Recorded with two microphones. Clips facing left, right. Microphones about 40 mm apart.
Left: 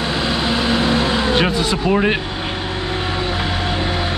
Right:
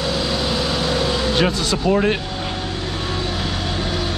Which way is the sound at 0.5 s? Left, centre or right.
Left.